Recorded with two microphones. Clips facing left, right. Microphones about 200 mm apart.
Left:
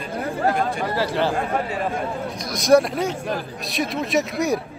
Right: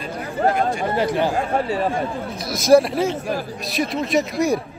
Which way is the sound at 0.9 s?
20° right (ahead or behind).